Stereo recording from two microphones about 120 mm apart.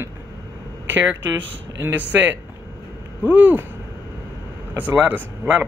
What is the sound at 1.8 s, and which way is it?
Speech, 15° right (ahead or behind).